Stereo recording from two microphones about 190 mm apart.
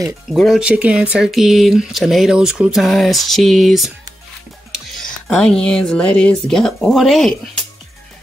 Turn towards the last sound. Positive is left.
turn(degrees=0)  # may be behind; listen again after turning